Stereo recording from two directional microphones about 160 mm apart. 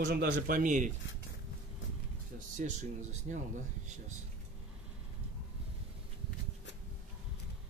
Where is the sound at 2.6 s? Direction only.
50° right (ahead or behind).